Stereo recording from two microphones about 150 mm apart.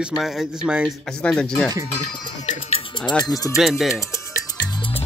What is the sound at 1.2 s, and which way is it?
Speech, 5° left (ahead or behind).